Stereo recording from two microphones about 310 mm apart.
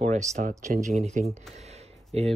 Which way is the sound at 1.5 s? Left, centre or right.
Right.